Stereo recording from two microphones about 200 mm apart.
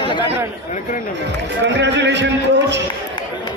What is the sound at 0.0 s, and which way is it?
Chatter, 25° left (ahead or behind).